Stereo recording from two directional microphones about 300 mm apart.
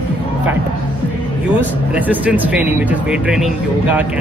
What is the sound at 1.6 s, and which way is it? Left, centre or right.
Speech, centre.